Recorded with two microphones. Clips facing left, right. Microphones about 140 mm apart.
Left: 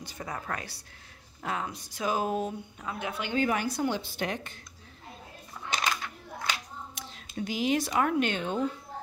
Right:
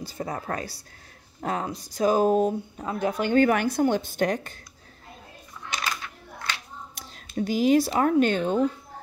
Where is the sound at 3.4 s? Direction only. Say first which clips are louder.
Right 6 dB; 60° right (ahead or behind); by 4.5 s 40° right (ahead or behind).